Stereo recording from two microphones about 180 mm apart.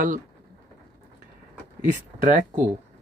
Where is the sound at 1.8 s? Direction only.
45° right (ahead or behind).